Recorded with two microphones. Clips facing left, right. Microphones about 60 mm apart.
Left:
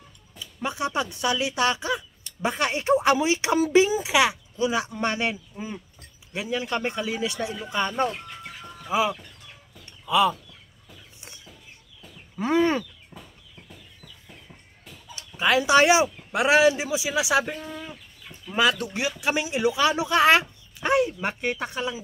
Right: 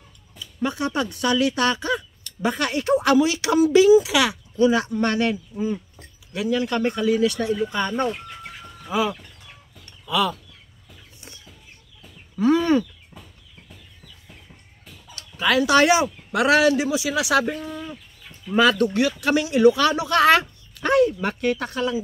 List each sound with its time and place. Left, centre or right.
0.4 s speech: centre
4.6 s speech: centre
8.6 s chicken: centre
10.0 s speech: centre
12.4 s speech: left
15.1 s speech: centre
18.5 s speech: centre